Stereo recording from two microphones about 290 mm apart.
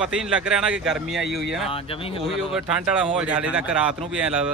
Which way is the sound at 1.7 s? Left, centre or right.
Centre.